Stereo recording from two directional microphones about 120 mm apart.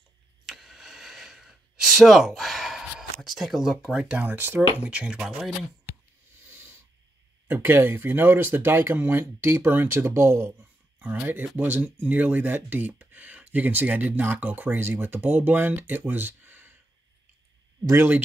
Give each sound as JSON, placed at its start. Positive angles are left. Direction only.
{"t": 0.5, "sound": "a sound", "side_deg": 0}
{"t": 7.4, "sound": "speech", "side_deg": -20}
{"t": 17.8, "sound": "speech", "side_deg": -20}